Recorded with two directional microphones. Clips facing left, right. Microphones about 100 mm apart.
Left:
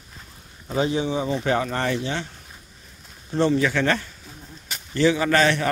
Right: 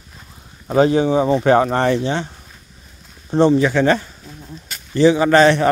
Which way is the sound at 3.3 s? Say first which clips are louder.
Right 7 dB; 25° right (ahead or behind).